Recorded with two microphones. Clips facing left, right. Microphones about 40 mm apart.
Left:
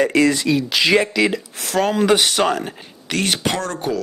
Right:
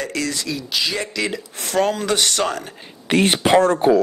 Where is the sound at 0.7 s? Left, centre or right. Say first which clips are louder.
Left 5 dB; left.